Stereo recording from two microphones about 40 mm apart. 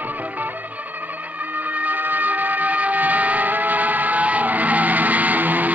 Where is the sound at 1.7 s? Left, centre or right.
Right.